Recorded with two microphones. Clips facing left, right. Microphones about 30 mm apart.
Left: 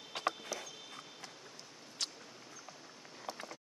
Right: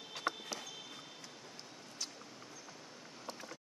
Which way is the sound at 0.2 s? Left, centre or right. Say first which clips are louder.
Left 2 dB; left.